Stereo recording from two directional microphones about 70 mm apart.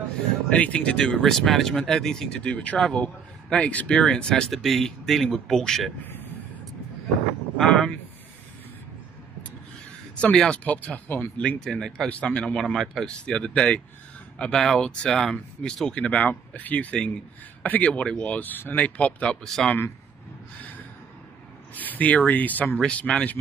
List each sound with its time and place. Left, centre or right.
0.5 s speech: centre
5.9 s a sound: left
7.5 s vehicle: centre
10.1 s speech: centre; by 11.4 s left
11.4 s speech: centre
12.5 s speech: centre
13.1 s speech: centre
19.4 s speech: centre
21.7 s speech: left